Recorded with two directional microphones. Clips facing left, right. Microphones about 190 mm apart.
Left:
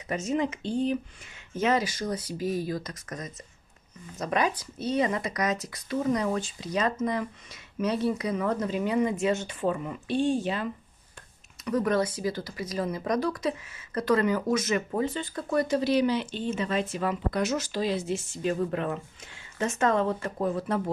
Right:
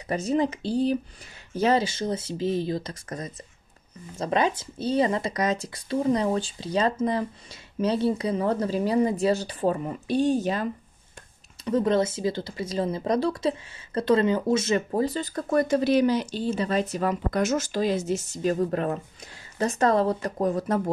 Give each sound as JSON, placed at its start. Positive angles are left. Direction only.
{"t": 0.1, "sound": "speech", "side_deg": -35}
{"t": 11.6, "sound": "speech", "side_deg": -25}
{"t": 14.9, "sound": "speech", "side_deg": -40}